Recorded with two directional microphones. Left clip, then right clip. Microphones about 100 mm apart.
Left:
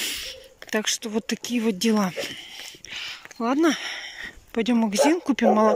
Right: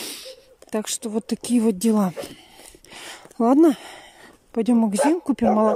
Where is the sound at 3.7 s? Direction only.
45° right (ahead or behind).